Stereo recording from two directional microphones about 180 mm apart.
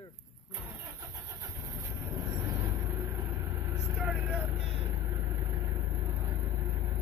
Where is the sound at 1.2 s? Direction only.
20° right (ahead or behind).